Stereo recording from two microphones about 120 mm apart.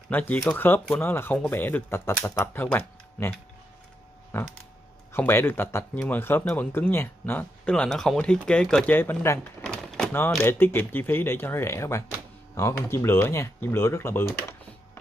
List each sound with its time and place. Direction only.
0.1 s speech: 15° left (ahead or behind)
7.6 s speech: 10° left (ahead or behind)
9.6 s a sound: 5° left (ahead or behind)
10.4 s speech: 20° left (ahead or behind)